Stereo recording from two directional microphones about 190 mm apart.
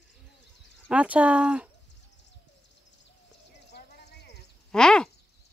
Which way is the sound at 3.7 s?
60° left (ahead or behind).